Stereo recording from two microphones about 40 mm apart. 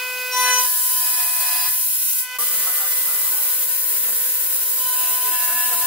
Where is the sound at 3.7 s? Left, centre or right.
Right.